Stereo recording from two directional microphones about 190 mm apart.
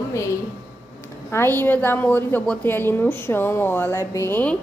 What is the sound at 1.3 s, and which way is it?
A woman's voice, 10° left (ahead or behind).